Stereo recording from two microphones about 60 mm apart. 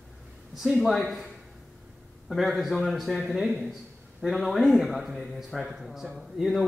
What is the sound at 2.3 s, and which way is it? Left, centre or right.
A man's voice, centre.